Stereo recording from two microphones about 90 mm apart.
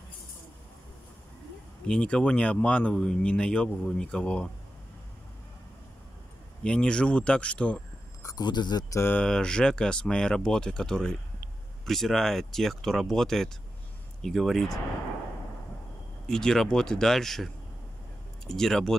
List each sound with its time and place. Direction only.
1.9 s speech: 10° left (ahead or behind)
6.6 s speech: 10° left (ahead or behind)
8.2 s a sound: 40° left (ahead or behind)
8.5 s speech: 55° left (ahead or behind)
9.1 s speech: 10° left (ahead or behind)
16.3 s speech: 5° left (ahead or behind)
18.5 s speech: 5° left (ahead or behind)